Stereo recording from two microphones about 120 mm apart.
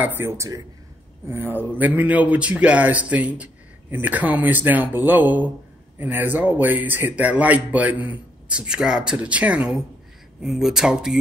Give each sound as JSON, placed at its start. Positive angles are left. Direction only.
{"t": 0.0, "sound": "speech", "side_deg": -20}